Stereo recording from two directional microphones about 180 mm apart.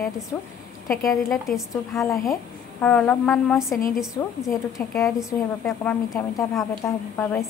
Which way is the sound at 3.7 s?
50° left (ahead or behind).